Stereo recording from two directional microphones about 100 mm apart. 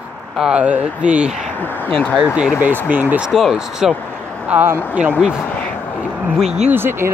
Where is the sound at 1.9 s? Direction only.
10° left (ahead or behind).